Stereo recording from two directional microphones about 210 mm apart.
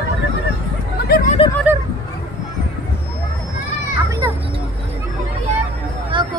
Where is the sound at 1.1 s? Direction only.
45° left (ahead or behind).